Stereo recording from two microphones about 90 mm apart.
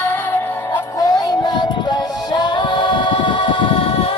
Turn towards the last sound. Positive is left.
turn(degrees=90)